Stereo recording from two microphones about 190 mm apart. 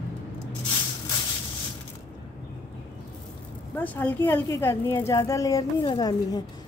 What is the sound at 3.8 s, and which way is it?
A woman's voice, 10° left (ahead or behind).